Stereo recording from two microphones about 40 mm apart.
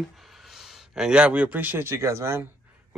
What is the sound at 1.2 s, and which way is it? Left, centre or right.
Speech, right.